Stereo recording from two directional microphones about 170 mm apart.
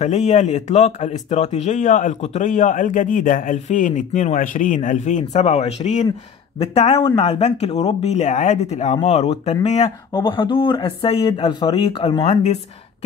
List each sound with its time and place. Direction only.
0.0 s speech: 45° left (ahead or behind)
10.1 s speech: 25° left (ahead or behind)